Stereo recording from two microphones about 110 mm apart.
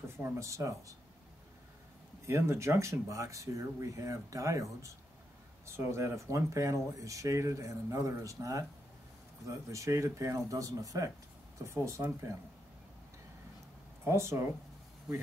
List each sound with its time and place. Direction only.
0.2 s speech: 25° right (ahead or behind)
2.2 s speech: 25° right (ahead or behind)
9.7 s speech: 25° right (ahead or behind)
14.0 s speech: 25° right (ahead or behind)